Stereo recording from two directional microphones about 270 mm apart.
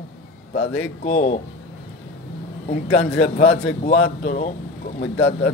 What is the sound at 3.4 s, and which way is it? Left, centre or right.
Speech, left.